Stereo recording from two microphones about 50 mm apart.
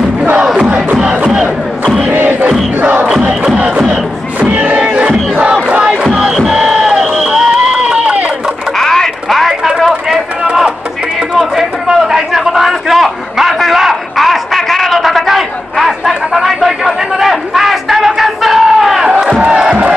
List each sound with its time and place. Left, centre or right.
0.6 s crowd: right
2.8 s crowd: right
3.3 s music: right
4.4 s crowd: right
6.1 s music: centre
7.1 s run: centre
7.7 s run: right
8.7 s radio: centre
9.5 s a sound: centre
10.1 s run: centre
11.3 s a sound: centre; by 19.7 s right